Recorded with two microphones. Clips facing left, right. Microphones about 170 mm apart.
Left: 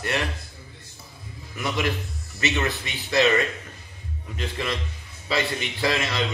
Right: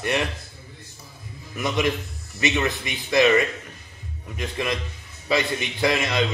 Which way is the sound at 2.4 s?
15° right (ahead or behind).